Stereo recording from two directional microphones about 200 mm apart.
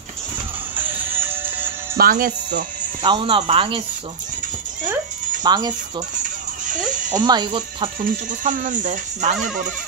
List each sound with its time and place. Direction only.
0.7 s music: 10° right (ahead or behind)
2.0 s speech: 45° right (ahead or behind)
3.0 s speech: 25° right (ahead or behind)
5.4 s speech: 20° right (ahead or behind)
6.9 s music: 40° right (ahead or behind)
7.2 s speech: 20° right (ahead or behind)
8.0 s speech: 40° right (ahead or behind)